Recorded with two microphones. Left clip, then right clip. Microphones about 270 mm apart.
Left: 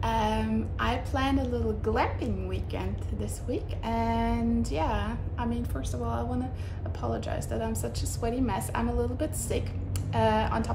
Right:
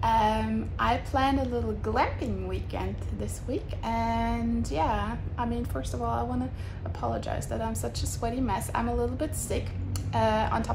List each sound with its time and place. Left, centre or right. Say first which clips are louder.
0.0 s a woman's voice: right 4 dB; centre